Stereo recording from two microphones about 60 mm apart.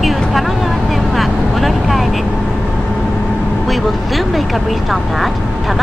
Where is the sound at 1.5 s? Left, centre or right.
Centre.